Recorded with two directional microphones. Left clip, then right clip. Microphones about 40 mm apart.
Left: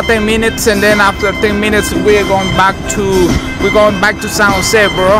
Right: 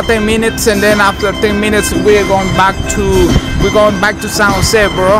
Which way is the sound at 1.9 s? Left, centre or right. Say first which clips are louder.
Right 2 dB; right.